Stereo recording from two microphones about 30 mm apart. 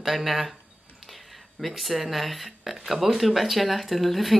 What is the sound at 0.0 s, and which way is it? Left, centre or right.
Speech, centre.